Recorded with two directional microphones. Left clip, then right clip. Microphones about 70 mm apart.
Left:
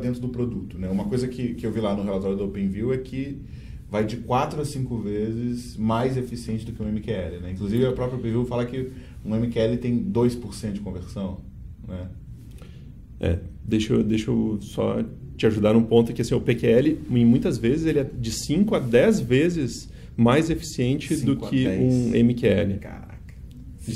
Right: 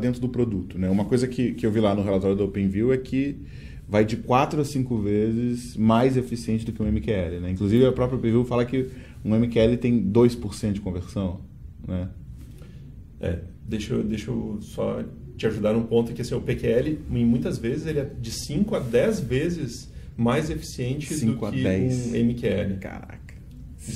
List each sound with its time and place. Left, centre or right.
0.0 s speech: right
13.2 s speech: left
21.6 s speech: right
22.1 s speech: left
22.8 s speech: right